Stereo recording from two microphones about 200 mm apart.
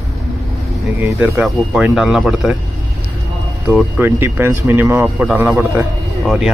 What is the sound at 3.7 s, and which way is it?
Speech, 10° right (ahead or behind).